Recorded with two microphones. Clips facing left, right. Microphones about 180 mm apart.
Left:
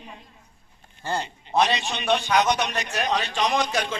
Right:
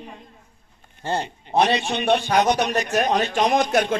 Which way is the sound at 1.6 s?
55° right (ahead or behind).